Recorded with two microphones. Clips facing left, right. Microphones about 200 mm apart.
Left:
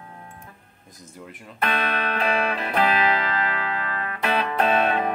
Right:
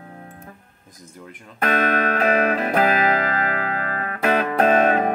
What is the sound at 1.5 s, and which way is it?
Music, 45° right (ahead or behind).